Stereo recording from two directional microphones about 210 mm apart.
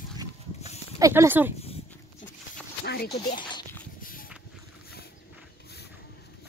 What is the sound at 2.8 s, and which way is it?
Speech, 50° left (ahead or behind).